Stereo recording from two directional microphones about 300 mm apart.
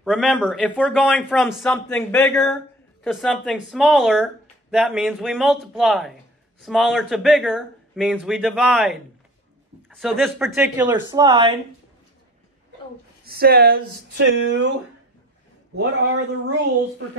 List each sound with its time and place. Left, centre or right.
0.0 s speech: centre
11.0 s speech: centre
13.2 s speech: right
15.8 s speech: right